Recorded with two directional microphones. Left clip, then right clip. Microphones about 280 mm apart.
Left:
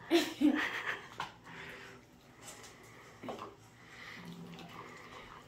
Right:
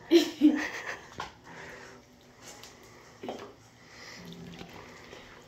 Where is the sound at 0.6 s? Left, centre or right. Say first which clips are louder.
Right 1 dB; centre.